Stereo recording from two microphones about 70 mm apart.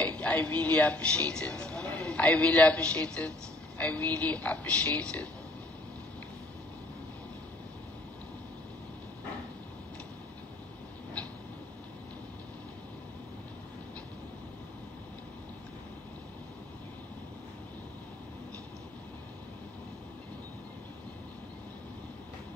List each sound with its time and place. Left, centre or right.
0.0 s speech: centre